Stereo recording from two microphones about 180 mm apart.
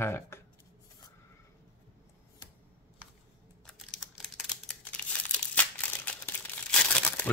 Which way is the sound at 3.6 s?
Centre (ahead or behind).